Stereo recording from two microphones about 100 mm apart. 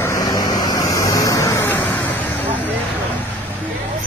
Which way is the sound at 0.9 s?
35° left (ahead or behind).